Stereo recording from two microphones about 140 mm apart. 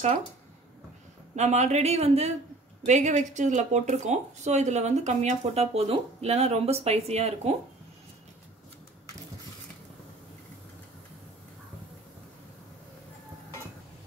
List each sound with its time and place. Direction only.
1.3 s speech: 55° right (ahead or behind)